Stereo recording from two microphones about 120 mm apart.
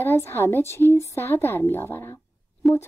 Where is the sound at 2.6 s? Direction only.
Centre (ahead or behind).